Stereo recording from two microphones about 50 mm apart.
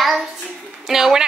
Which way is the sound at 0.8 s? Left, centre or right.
Centre.